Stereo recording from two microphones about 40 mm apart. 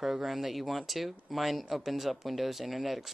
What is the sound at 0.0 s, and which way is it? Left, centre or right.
Speech, centre.